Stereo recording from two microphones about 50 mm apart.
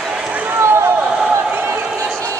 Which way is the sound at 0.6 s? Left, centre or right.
Right.